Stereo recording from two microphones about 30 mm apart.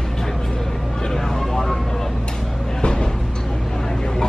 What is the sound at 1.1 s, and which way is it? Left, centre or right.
Vehicle, centre.